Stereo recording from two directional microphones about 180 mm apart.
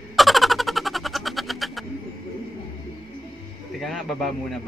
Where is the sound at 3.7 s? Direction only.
Centre (ahead or behind).